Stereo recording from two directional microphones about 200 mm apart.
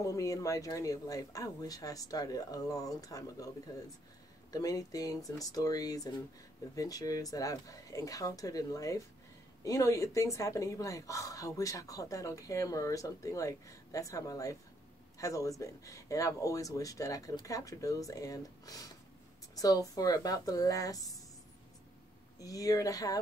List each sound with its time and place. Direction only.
0.0 s a woman's voice: 15° left (ahead or behind)
22.4 s a woman's voice: 15° left (ahead or behind)